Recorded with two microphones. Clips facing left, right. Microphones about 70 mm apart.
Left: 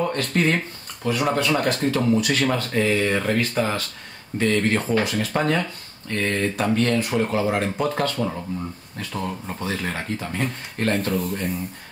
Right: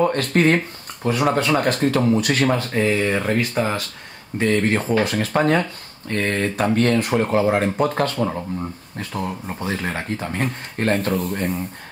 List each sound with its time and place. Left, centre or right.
0.0 s speech: right
2.4 s speech: right
2.8 s speech: centre
5.0 s speech: right
9.2 s speech: centre
9.7 s speech: right
11.3 s speech: right